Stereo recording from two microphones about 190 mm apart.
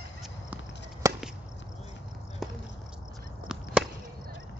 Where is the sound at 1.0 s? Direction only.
15° right (ahead or behind).